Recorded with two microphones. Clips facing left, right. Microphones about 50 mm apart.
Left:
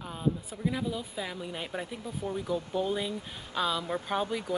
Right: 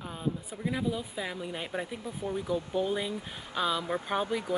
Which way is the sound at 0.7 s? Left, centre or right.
Centre.